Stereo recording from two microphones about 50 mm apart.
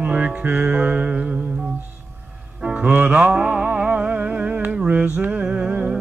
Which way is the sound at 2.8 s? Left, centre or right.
Right.